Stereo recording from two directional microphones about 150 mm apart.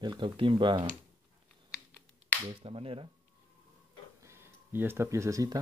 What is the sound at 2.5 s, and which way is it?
Speech, 40° right (ahead or behind).